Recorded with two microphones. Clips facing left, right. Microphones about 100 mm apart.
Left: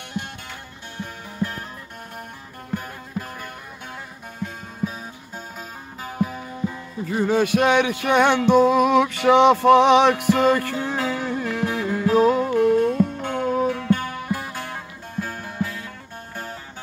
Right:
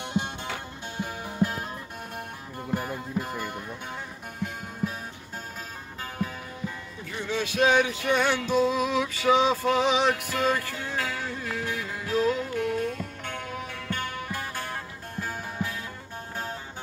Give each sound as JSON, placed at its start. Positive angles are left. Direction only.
{"t": 0.9, "sound": "music", "side_deg": -15}
{"t": 2.7, "sound": "music", "side_deg": -5}
{"t": 6.0, "sound": "music", "side_deg": 15}
{"t": 7.1, "sound": "music", "side_deg": 45}
{"t": 13.4, "sound": "music", "side_deg": 35}
{"t": 13.8, "sound": "music", "side_deg": 10}
{"t": 14.7, "sound": "music", "side_deg": 0}